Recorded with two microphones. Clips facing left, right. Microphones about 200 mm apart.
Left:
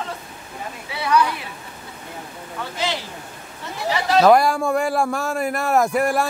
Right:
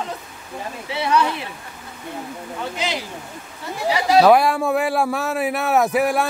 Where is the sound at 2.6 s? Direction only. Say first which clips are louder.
Even; 15° right (ahead or behind).